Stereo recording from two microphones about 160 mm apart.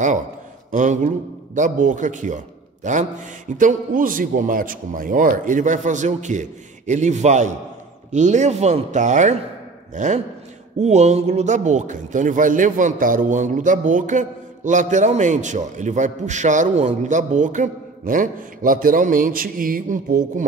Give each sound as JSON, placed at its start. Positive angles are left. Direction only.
{"t": 0.7, "sound": "a man's voice", "side_deg": -50}